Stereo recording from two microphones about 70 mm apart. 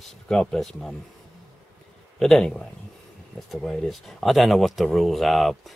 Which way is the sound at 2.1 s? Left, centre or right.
Centre.